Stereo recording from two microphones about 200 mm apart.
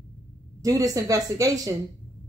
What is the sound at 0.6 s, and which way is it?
Speech, 15° right (ahead or behind).